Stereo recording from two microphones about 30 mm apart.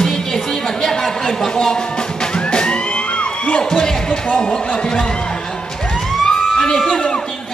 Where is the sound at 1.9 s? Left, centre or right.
Left.